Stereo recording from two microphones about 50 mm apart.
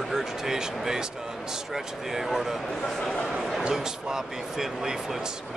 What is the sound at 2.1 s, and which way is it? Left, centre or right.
Speech, centre.